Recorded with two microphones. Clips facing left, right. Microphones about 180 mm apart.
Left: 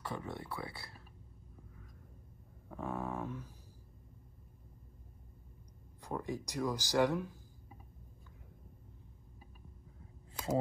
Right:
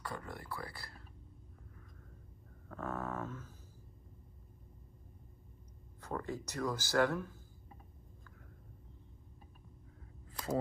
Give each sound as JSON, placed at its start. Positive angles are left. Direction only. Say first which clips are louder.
{"t": 0.0, "sound": "speech", "louder": "left 3 dB", "side_deg": 25}
{"t": 2.7, "sound": "a sound", "louder": "left 1 dB", "side_deg": 15}
{"t": 5.9, "sound": "speech", "louder": "left 1 dB", "side_deg": 15}